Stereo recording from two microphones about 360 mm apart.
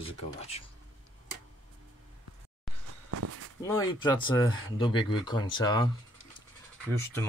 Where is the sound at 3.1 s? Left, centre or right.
Right.